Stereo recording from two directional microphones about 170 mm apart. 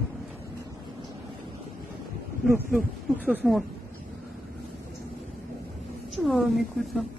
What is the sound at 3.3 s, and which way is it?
Speech, centre (ahead or behind).